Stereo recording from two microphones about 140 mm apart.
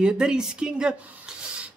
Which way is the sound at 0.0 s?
5° right (ahead or behind).